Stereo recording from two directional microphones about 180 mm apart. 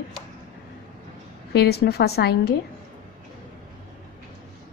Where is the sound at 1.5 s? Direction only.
65° left (ahead or behind).